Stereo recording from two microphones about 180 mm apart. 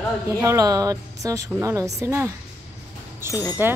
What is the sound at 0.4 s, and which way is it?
A woman's voice, 15° right (ahead or behind).